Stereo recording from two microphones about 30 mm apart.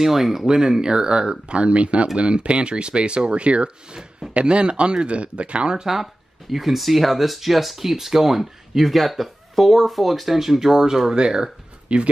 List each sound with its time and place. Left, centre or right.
0.0 s speech: centre
0.5 s speech: right
6.5 s speech: centre
11.1 s speech: right
11.9 s speech: right